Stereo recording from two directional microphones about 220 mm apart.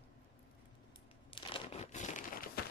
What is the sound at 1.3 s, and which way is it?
Crumpling, 25° left (ahead or behind).